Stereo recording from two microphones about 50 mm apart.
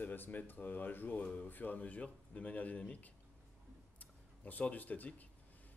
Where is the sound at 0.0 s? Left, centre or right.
Left.